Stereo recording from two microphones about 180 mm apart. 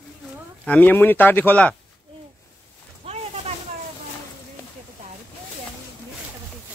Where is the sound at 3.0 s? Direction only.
30° right (ahead or behind).